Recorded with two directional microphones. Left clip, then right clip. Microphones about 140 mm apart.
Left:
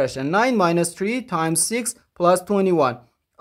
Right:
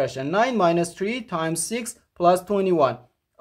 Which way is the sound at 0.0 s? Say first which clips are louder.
Left 2 dB; 35° left (ahead or behind).